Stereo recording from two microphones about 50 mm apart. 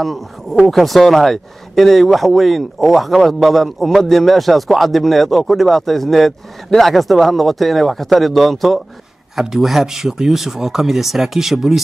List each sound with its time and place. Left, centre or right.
0.0 s speech: centre